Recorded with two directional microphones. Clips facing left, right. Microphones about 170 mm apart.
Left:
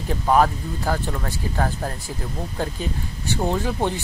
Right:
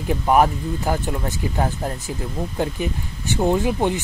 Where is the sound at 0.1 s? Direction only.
15° right (ahead or behind).